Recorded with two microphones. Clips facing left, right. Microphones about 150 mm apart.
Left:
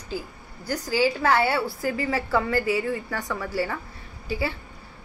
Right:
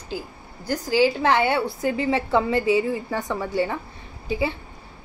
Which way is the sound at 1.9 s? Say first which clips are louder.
Right 4 dB; 25° right (ahead or behind).